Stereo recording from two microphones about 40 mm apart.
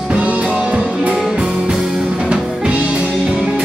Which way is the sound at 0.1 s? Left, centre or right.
Right.